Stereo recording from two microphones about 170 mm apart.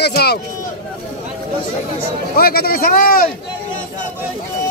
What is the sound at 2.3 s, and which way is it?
A man's voice, 60° left (ahead or behind).